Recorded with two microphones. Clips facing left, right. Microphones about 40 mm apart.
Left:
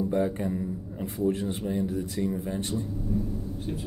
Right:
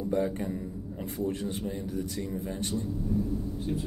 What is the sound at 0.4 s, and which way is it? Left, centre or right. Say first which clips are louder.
Speech: left 4 dB; centre.